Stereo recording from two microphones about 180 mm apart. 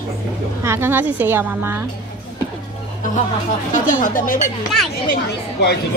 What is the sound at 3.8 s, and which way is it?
Speech, 45° left (ahead or behind).